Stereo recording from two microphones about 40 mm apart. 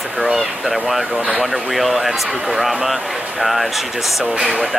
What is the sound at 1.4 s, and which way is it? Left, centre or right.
Speech, centre.